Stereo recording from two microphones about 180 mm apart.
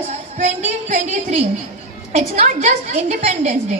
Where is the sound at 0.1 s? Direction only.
35° right (ahead or behind).